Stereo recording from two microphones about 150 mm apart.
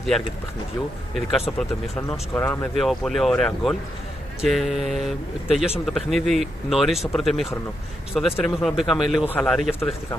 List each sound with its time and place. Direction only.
1.6 s speech: 10° left (ahead or behind)
2.7 s speech: centre (ahead or behind)